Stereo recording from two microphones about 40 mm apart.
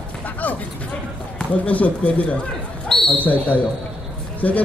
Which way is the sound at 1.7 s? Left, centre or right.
Left.